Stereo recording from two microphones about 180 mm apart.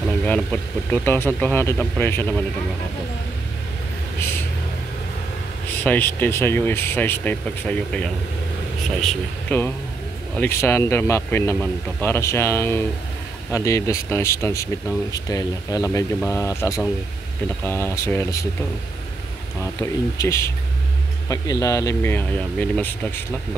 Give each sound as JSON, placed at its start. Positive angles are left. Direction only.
{"t": 0.2, "sound": "speech", "side_deg": 10}
{"t": 5.9, "sound": "speech", "side_deg": 10}
{"t": 19.6, "sound": "speech", "side_deg": 15}